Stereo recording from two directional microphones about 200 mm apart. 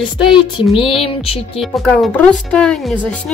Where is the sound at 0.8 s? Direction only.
25° left (ahead or behind).